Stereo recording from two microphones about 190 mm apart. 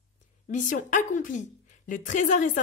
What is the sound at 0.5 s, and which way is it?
A woman's voice, 40° left (ahead or behind).